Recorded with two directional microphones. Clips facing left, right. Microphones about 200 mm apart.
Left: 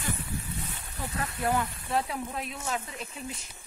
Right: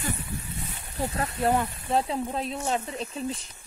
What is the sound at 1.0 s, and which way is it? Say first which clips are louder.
Speech: right 5 dB; 30° right (ahead or behind).